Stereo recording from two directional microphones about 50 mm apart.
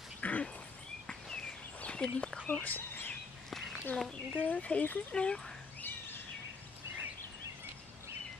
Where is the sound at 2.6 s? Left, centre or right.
Left.